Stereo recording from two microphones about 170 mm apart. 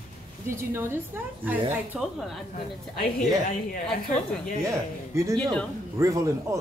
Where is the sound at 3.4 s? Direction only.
50° left (ahead or behind).